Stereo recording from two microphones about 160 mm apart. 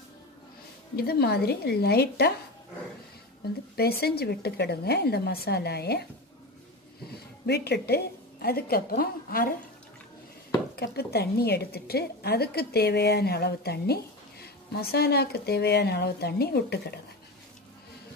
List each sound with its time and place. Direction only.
0.9 s a woman's voice: 75° left (ahead or behind)
3.7 s speech: 75° left (ahead or behind)
7.1 s a woman's voice: 85° left; by 9.5 s 65° left (ahead or behind)
10.8 s a woman's voice: 85° left